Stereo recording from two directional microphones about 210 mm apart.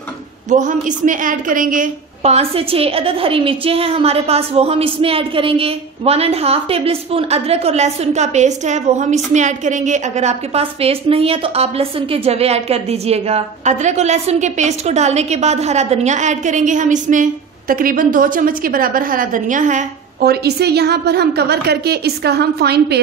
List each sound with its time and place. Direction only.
0.5 s a woman's voice: 35° right (ahead or behind)
20.4 s a woman's voice: 50° right (ahead or behind)